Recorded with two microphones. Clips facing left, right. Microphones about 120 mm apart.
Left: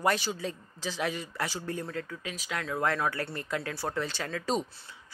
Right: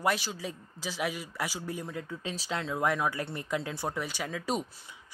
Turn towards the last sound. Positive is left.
turn(degrees=-10)  # may be behind; listen again after turning